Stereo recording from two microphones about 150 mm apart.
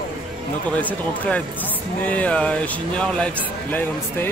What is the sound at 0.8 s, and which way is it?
Speech, 10° left (ahead or behind).